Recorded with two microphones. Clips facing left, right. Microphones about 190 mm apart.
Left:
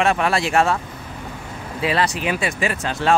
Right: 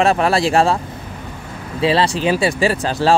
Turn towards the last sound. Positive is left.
turn(degrees=-35)  # may be behind; listen again after turning